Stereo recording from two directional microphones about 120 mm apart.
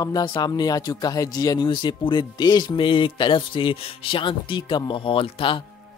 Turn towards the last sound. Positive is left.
turn(degrees=50)  # may be behind; listen again after turning